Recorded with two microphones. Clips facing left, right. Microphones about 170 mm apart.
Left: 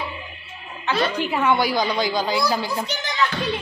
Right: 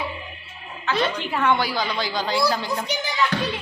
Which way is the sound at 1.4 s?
10° left (ahead or behind).